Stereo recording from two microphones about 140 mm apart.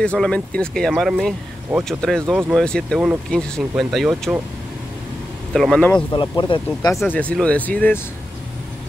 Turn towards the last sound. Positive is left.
turn(degrees=10)  # may be behind; listen again after turning